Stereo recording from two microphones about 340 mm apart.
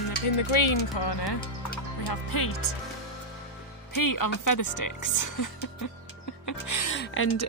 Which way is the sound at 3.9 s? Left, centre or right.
Left.